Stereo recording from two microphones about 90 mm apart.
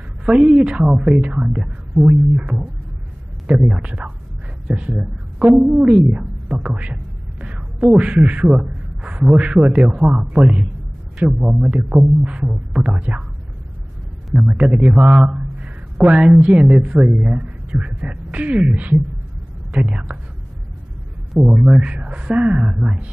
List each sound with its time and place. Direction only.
0.2 s a sound: 5° right (ahead or behind)
0.5 s speech: 10° right (ahead or behind)
1.5 s speech: centre (ahead or behind)
2.3 s a man's voice: 15° right (ahead or behind)
11.9 s speech: centre (ahead or behind)
12.3 s speech: 10° right (ahead or behind)
14.3 s speech: centre (ahead or behind)
14.6 s a man's voice: 15° right (ahead or behind)
21.3 s a man's voice: centre (ahead or behind)